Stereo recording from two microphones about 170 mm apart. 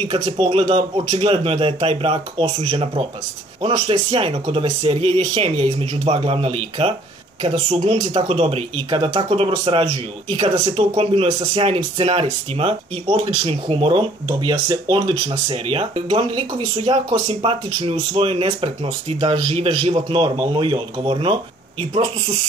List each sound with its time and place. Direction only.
0.0 s speech: 35° right (ahead or behind)